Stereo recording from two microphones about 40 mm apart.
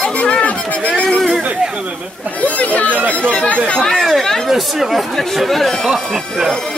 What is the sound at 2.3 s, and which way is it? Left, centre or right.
Speech, left.